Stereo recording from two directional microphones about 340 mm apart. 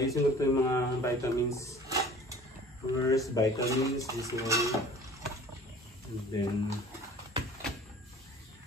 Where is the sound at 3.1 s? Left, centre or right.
Centre.